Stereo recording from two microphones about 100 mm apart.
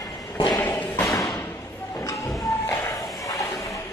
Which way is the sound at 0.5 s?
20° left (ahead or behind).